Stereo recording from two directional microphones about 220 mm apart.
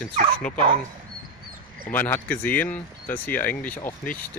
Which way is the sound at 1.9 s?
10° left (ahead or behind).